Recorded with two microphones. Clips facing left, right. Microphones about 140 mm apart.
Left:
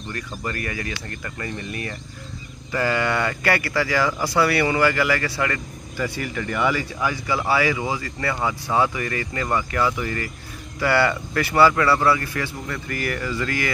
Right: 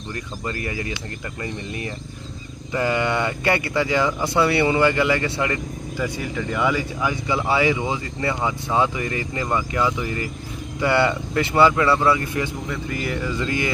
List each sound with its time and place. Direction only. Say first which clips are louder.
0.1 s speech: even; 20° right (ahead or behind)